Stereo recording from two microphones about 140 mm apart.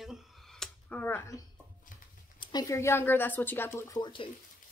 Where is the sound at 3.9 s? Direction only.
35° left (ahead or behind).